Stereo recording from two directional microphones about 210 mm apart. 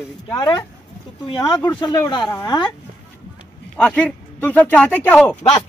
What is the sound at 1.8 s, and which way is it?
Speech, 20° left (ahead or behind).